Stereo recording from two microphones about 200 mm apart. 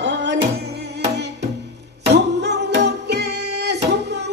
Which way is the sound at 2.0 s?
55° right (ahead or behind).